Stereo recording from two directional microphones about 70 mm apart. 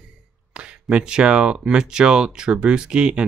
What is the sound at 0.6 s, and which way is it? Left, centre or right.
Speech, centre.